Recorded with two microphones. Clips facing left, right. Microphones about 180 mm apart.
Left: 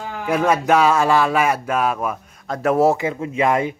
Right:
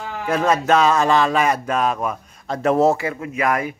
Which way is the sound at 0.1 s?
10° left (ahead or behind).